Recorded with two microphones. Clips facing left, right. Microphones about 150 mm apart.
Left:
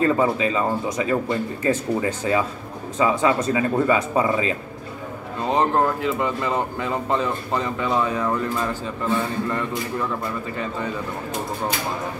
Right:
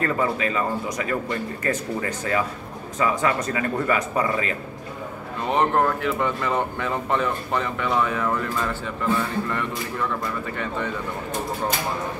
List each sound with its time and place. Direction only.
0.0 s speech: 20° left (ahead or behind)
5.5 s speech: 35° left (ahead or behind)
5.9 s speech: 20° left (ahead or behind)
9.5 s speech: 20° left (ahead or behind)